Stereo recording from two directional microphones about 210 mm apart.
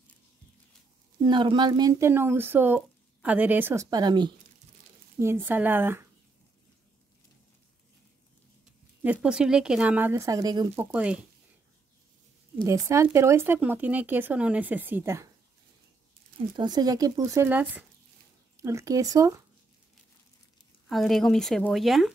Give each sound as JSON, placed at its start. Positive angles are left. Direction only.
{"t": 1.2, "sound": "speech", "side_deg": -20}
{"t": 9.0, "sound": "speech", "side_deg": -5}
{"t": 10.9, "sound": "speech", "side_deg": -5}
{"t": 12.6, "sound": "speech", "side_deg": -15}
{"t": 16.5, "sound": "speech", "side_deg": -20}
{"t": 20.9, "sound": "speech", "side_deg": 0}